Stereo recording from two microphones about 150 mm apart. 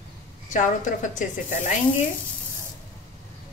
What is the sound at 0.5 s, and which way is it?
Speech, 60° left (ahead or behind).